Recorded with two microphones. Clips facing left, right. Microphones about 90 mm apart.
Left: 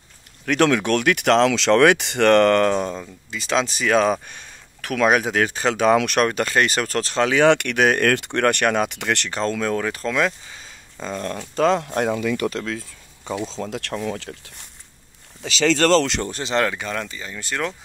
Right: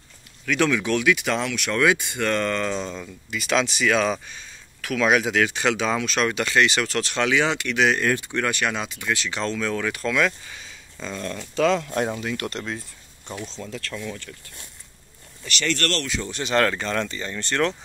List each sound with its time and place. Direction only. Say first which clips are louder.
0.5 s speech: left 4 dB; 55° left (ahead or behind)
3.0 s speech: right 1 dB; 30° left (ahead or behind)
5.9 s speech: left 7 dB; 60° left (ahead or behind)
6.2 s speech: left 1 dB; 40° left (ahead or behind)
7.4 s speech: left 5 dB; 60° left (ahead or behind)
8.1 s speech: left 5 dB; 65° left (ahead or behind)
9.3 s speech: left 3 dB; 40° left (ahead or behind)
13.6 s speech: left 5 dB; 75° left (ahead or behind)
14.0 s speech: left 6 dB; 85° left
15.6 s speech: left 9 dB; 75° left (ahead or behind)
16.4 s speech: right 1 dB; 15° left (ahead or behind)